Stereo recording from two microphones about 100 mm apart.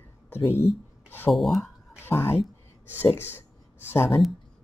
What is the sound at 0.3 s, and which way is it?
Speech, 25° left (ahead or behind).